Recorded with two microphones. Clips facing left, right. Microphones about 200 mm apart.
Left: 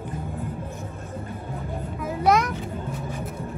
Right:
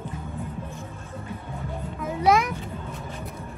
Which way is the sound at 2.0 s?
Centre (ahead or behind).